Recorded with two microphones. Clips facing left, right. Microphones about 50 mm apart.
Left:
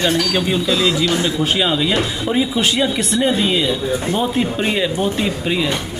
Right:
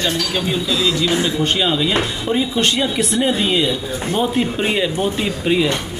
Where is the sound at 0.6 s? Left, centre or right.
Left.